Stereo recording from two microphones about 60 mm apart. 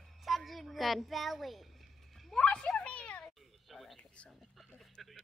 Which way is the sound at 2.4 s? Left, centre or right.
Centre.